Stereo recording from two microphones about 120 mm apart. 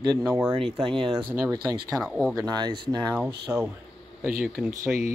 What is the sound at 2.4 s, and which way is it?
Speech, 35° right (ahead or behind).